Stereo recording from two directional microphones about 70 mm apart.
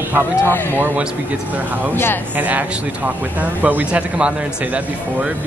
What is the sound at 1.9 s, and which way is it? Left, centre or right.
Speech, left.